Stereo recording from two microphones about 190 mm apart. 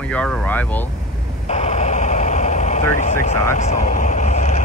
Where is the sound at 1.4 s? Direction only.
35° left (ahead or behind).